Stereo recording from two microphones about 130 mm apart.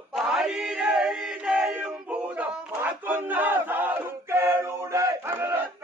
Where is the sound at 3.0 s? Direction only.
15° right (ahead or behind).